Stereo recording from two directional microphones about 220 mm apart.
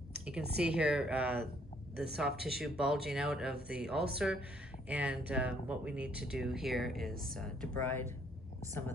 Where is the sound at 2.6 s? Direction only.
Centre (ahead or behind).